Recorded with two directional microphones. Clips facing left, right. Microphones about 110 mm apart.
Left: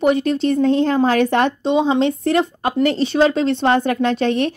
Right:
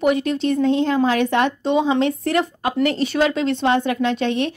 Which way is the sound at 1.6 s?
25° left (ahead or behind).